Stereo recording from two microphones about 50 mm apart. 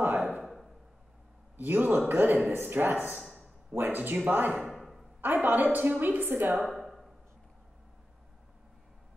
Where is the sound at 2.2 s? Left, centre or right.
Right.